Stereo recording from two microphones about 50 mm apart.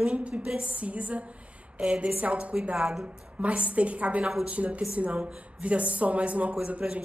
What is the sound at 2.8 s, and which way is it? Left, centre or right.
Speech, centre.